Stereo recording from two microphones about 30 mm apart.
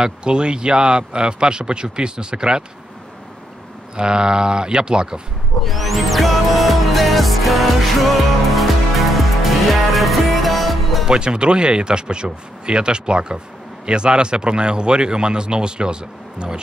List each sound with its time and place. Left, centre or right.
0.0 s a man's voice: right
3.9 s speech: right
5.6 s music: centre
11.1 s a man's voice: right